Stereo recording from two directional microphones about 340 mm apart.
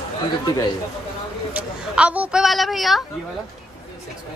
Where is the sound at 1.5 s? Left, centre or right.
Centre.